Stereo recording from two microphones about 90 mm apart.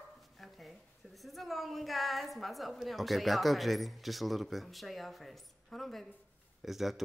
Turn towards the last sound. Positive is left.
turn(degrees=-5)  # may be behind; listen again after turning